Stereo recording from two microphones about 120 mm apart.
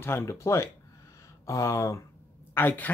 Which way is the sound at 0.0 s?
20° left (ahead or behind).